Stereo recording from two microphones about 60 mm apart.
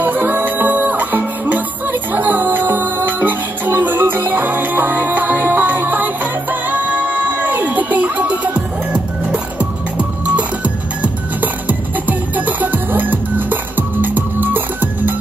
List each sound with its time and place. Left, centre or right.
0.0 s music: right